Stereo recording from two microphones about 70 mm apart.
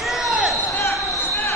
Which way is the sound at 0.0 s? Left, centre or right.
Centre.